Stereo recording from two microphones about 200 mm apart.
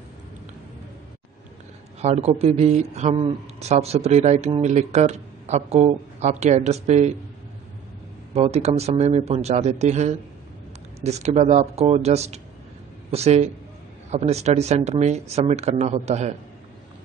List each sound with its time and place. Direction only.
2.0 s speech: 35° right (ahead or behind)
8.4 s speech: 30° right (ahead or behind)